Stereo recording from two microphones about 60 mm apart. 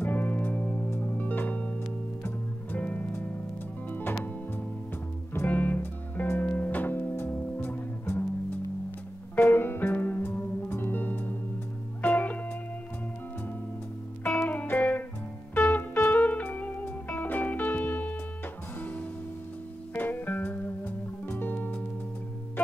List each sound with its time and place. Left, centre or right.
0.0 s music: left
5.5 s music: left
9.3 s music: left
14.2 s music: left